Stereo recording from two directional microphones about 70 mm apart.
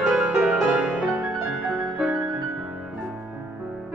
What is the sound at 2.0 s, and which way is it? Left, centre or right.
Music, centre.